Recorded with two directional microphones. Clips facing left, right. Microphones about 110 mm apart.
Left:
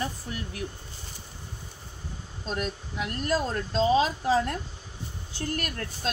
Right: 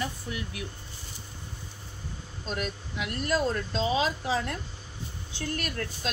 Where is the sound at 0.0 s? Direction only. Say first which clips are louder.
Left 1 dB; 40° left (ahead or behind).